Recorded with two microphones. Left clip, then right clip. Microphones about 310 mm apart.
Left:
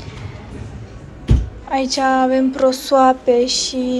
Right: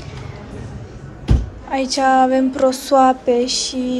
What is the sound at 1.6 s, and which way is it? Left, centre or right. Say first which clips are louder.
A woman's voice: right 1 dB; centre.